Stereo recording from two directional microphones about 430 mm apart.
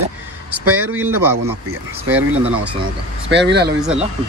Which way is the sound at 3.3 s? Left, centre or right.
Right.